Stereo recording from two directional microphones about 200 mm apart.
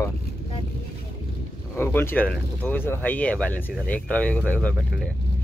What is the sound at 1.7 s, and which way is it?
Speech, 10° left (ahead or behind).